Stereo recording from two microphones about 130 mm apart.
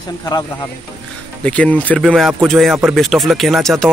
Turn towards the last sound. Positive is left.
turn(degrees=0)  # may be behind; listen again after turning